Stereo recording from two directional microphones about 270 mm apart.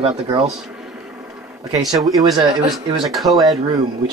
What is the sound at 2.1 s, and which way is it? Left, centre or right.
Speech, centre.